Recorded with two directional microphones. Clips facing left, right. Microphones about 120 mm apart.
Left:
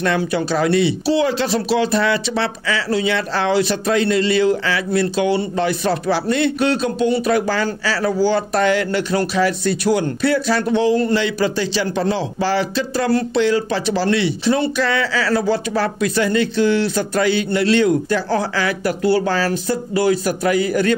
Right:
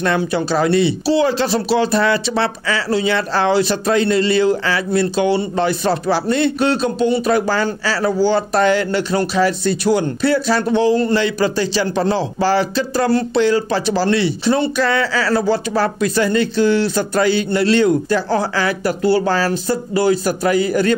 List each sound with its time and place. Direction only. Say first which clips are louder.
0.0 s speech: right 1 dB; 30° right (ahead or behind)